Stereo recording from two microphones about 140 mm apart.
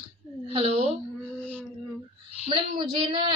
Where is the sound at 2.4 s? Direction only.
35° right (ahead or behind).